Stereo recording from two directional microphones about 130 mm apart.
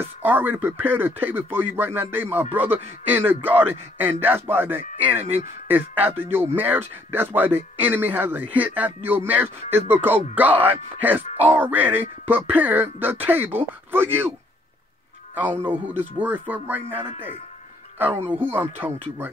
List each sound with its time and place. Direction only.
0.2 s speech: 15° right (ahead or behind)
15.6 s speech: 15° right (ahead or behind)